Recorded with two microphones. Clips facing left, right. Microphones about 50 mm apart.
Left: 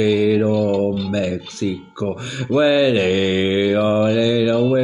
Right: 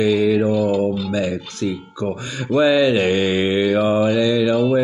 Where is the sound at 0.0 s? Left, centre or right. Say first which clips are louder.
Even; centre.